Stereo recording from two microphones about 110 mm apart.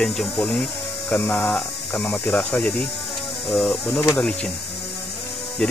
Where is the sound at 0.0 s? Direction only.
Centre (ahead or behind).